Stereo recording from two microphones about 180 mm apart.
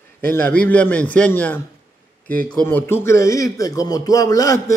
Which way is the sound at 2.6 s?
10° left (ahead or behind).